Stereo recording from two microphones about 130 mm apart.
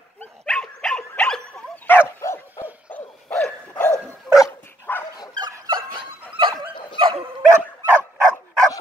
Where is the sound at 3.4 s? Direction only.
15° left (ahead or behind).